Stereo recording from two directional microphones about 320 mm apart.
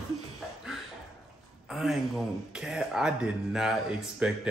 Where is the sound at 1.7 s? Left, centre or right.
Centre.